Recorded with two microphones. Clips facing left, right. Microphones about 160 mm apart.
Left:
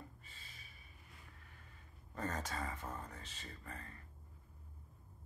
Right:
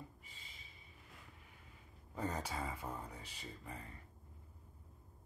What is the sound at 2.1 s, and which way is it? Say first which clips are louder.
Speech: right 1 dB; 10° right (ahead or behind).